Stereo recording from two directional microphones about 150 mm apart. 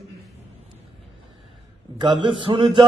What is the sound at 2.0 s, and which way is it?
Speech, 30° right (ahead or behind).